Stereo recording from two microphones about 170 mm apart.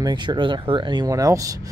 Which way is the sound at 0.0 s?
25° right (ahead or behind).